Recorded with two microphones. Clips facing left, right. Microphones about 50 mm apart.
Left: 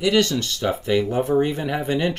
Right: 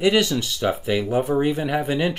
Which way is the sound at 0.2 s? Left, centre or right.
Centre.